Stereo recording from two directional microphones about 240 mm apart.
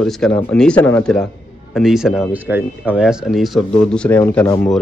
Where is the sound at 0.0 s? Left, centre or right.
Centre.